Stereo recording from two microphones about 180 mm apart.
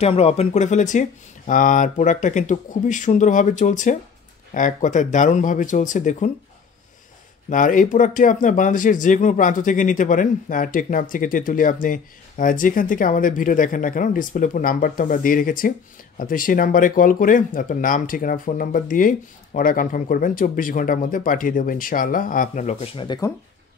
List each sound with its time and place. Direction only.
0.0 s speech: 35° left (ahead or behind)
7.4 s speech: 45° left (ahead or behind); by 23.3 s 25° left (ahead or behind)